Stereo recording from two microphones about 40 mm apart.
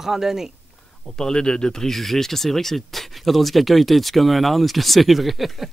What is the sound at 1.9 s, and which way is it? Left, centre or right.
Speech, centre.